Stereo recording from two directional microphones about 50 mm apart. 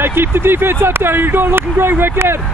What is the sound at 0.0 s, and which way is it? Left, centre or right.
Speech, right.